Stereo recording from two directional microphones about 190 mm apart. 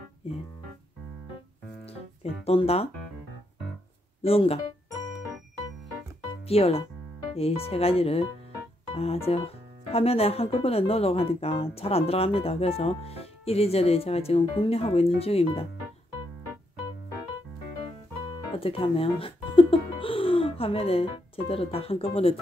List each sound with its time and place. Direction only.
2.4 s speech: 30° left (ahead or behind)
4.2 s speech: 30° left (ahead or behind)
6.4 s speech: 30° left (ahead or behind)
18.6 s speech: 30° left (ahead or behind)